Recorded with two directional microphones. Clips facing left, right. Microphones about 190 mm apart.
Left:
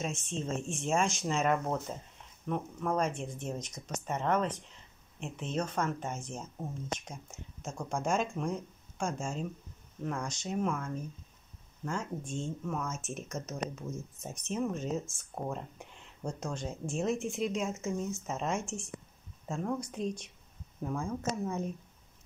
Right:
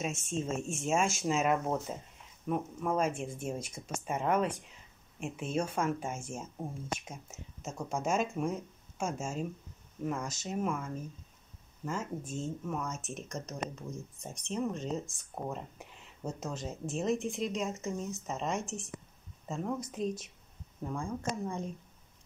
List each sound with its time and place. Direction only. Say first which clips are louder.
0.3 s speech: right 1 dB; 5° right (ahead or behind)
13.8 s speech: left 2 dB; 15° right (ahead or behind)
14.5 s speech: left 1 dB; 5° left (ahead or behind)